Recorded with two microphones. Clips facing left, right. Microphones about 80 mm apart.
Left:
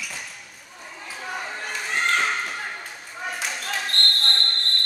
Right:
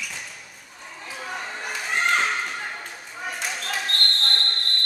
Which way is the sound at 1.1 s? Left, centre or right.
Centre.